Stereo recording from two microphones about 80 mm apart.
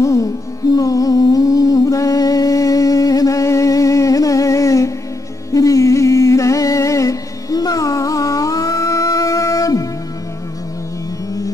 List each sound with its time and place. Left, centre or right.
0.0 s music: left
0.7 s humming: left